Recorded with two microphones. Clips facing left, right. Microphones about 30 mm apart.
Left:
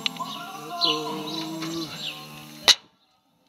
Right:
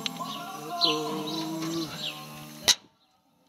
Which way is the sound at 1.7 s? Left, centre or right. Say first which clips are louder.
Left 1 dB; centre.